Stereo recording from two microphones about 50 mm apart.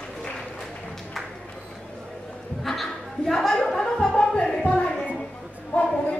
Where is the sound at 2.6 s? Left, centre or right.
Centre.